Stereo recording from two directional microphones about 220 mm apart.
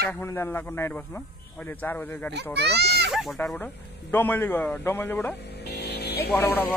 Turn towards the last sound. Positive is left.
turn(degrees=10)  # may be behind; listen again after turning